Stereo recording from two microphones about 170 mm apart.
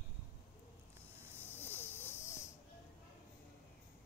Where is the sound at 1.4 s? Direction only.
10° left (ahead or behind).